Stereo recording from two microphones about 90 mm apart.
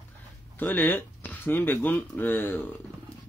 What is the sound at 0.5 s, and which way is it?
Speech, 20° left (ahead or behind).